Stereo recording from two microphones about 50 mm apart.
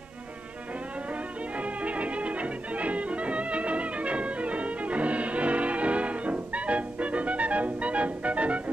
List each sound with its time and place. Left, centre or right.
1.6 s music: right